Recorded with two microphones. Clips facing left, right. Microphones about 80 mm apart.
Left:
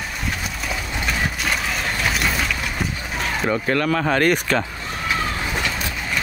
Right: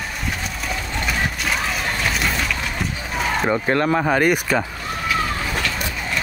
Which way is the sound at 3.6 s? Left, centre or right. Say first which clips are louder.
Right 2 dB; right.